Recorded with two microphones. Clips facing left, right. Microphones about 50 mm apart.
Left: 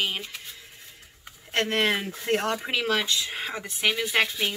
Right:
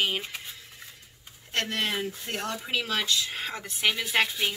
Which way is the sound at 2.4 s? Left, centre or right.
Left.